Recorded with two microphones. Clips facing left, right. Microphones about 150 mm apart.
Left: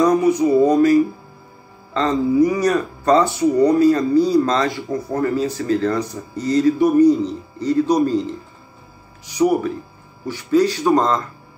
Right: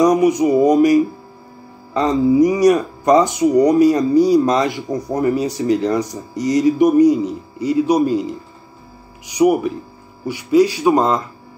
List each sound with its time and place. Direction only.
0.0 s speech: 15° right (ahead or behind)